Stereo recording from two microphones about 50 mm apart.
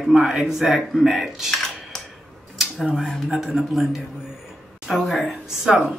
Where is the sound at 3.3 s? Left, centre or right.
Centre.